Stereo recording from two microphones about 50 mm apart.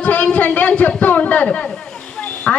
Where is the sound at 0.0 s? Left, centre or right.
Left.